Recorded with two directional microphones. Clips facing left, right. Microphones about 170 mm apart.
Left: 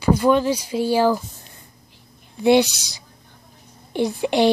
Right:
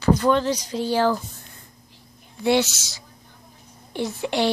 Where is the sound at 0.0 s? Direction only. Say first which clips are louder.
Left 2 dB; 10° left (ahead or behind).